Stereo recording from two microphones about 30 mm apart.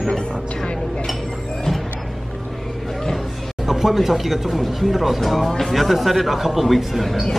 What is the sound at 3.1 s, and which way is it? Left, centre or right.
Speech, centre.